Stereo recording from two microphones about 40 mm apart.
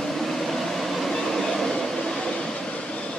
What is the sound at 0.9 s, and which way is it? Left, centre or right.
Train, centre.